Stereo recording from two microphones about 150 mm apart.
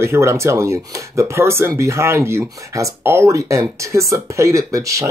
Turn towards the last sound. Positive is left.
turn(degrees=-20)  # may be behind; listen again after turning